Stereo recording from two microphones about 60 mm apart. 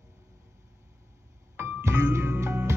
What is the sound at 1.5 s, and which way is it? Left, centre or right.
Music, right.